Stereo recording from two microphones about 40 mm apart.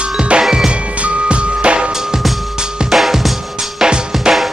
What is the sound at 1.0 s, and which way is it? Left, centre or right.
Music, right.